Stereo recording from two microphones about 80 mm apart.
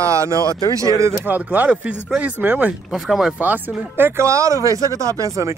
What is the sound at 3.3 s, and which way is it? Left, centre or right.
Speech, right.